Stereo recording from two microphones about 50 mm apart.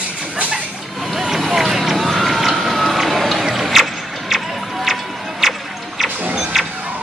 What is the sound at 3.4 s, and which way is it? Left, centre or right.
Music, centre.